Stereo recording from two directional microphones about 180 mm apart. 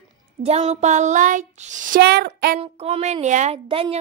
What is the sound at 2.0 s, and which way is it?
Speech, 65° right (ahead or behind).